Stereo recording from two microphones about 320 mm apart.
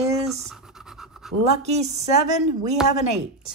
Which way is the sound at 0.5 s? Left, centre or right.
Centre.